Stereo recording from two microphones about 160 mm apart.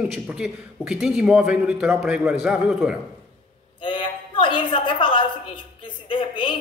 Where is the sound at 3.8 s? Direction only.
30° left (ahead or behind).